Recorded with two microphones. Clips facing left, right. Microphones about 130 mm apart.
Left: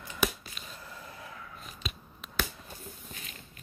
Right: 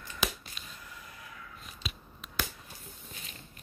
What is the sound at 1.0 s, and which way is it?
Vehicle, 25° left (ahead or behind).